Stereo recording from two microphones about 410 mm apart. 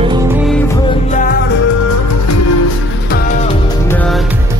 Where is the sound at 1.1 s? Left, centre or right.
Centre.